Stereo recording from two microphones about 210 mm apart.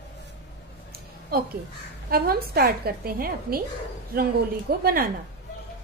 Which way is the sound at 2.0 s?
45° right (ahead or behind).